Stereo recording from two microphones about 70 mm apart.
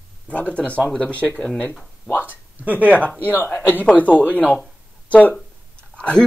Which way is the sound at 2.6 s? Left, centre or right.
Right.